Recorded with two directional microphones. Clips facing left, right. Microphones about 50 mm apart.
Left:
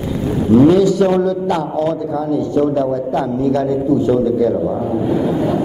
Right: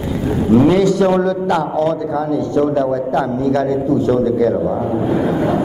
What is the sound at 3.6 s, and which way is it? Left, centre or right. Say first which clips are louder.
Speech: even; right.